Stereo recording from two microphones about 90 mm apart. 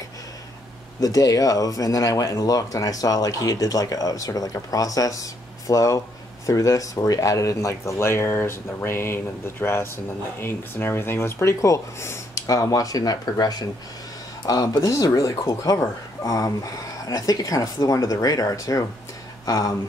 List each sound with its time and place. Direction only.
1.0 s speech: 40° left (ahead or behind)